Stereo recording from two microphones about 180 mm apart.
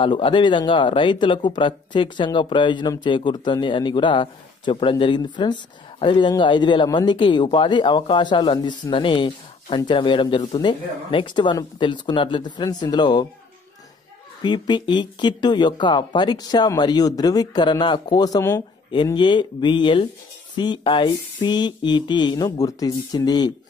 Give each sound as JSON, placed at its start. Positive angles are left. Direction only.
{"t": 0.0, "sound": "speech", "side_deg": 25}
{"t": 14.4, "sound": "speech", "side_deg": 25}